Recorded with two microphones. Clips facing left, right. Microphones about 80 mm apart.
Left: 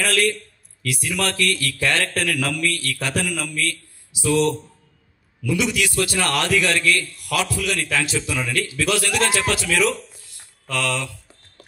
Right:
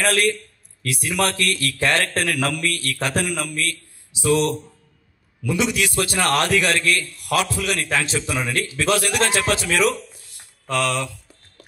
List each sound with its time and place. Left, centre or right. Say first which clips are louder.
0.0 s a man's voice: right 1 dB; right
10.3 s mantra: right 4 dB; right